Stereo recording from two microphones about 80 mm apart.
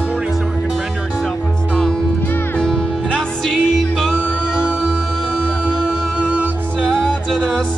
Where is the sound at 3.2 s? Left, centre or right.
Centre.